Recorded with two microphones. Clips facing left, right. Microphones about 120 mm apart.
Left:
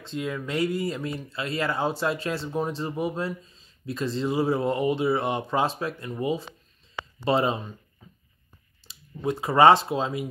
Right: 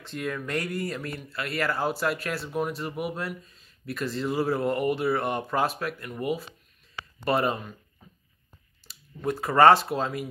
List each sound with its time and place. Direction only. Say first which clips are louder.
0.0 s speech: left 1 dB; 15° left (ahead or behind)
8.8 s speech: left 1 dB; 15° left (ahead or behind)